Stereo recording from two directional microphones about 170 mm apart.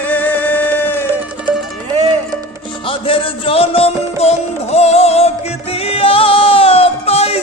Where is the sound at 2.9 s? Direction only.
30° left (ahead or behind).